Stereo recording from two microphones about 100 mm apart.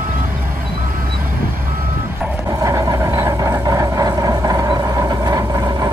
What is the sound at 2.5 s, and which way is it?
Vehicle, 30° right (ahead or behind).